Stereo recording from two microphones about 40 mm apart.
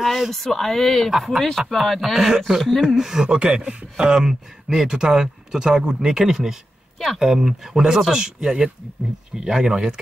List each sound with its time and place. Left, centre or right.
0.0 s speech: centre
0.3 s speech: centre
1.1 s speech: centre
2.0 s speech: centre